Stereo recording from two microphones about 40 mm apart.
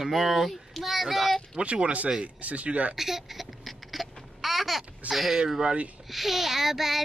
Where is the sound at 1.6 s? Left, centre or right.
Right.